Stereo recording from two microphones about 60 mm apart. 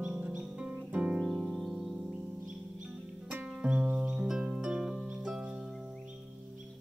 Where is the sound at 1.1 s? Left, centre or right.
Centre.